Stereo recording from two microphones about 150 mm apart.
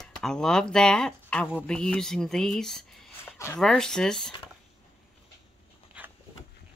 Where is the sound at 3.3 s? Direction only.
15° left (ahead or behind).